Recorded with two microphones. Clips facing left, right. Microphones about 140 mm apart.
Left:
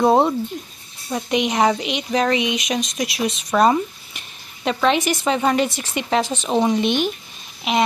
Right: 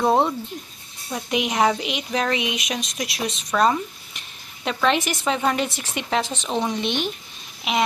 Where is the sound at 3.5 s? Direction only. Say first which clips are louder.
Left 4 dB; 20° left (ahead or behind).